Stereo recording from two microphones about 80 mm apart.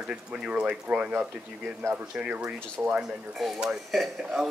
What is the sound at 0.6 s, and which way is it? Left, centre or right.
Speech, right.